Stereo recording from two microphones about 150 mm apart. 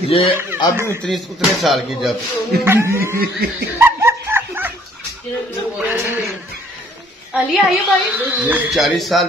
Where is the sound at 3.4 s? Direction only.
90° right.